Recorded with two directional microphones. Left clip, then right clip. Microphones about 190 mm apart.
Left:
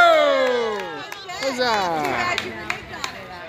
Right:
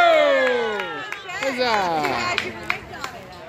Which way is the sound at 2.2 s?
60° left (ahead or behind).